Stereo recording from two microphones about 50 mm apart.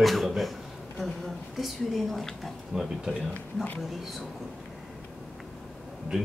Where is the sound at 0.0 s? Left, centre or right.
Centre.